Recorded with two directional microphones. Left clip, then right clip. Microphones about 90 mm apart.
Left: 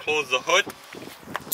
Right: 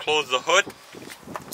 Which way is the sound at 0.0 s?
20° right (ahead or behind).